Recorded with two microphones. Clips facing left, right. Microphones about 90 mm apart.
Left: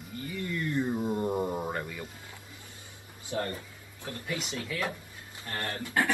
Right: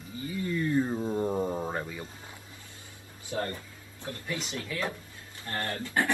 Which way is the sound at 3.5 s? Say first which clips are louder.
Left 1 dB; 15° left (ahead or behind).